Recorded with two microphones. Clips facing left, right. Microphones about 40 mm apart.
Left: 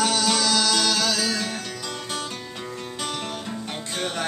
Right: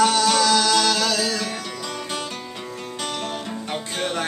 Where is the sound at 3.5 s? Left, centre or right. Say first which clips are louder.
Right 3 dB; centre.